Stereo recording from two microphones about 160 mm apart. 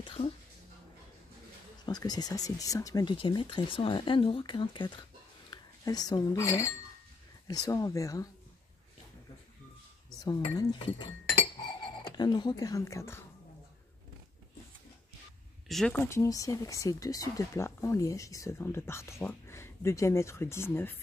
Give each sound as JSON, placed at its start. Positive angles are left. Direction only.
{"t": 0.0, "sound": "a sound", "side_deg": 35}
{"t": 1.9, "sound": "speech", "side_deg": 25}
{"t": 10.2, "sound": "speech", "side_deg": 25}
{"t": 15.7, "sound": "speech", "side_deg": 5}
{"t": 16.1, "sound": "speech", "side_deg": 20}